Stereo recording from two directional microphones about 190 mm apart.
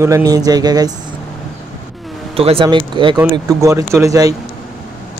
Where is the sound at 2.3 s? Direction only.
30° right (ahead or behind).